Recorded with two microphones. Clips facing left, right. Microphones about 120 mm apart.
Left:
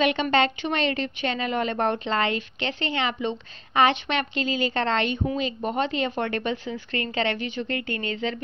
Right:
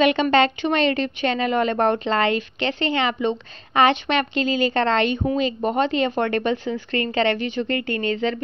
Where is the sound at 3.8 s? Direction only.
80° right.